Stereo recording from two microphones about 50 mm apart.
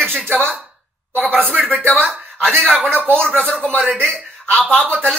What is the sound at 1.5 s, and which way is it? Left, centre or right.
Speech, centre.